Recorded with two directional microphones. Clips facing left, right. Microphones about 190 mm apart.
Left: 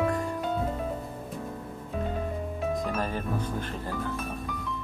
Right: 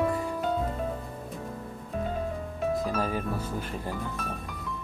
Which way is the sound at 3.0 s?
10° right (ahead or behind).